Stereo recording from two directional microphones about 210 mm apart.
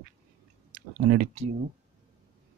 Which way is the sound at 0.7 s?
40° right (ahead or behind).